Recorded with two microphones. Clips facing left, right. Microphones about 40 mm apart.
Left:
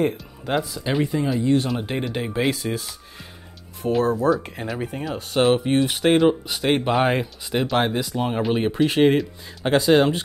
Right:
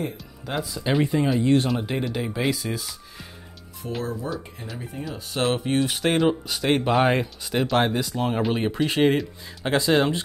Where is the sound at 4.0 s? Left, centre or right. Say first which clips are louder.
Left 11 dB; left.